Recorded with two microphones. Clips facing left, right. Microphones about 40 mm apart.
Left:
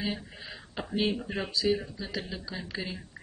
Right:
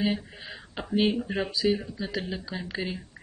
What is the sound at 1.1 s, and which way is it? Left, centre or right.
Speech, centre.